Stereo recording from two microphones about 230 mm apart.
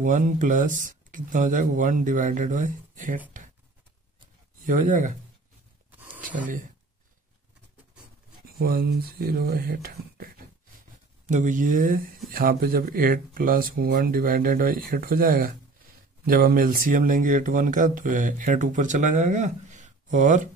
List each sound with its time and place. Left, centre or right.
0.0 s speech: right
4.6 s speech: right
5.9 s a sound: centre
6.2 s speech: right
8.5 s speech: right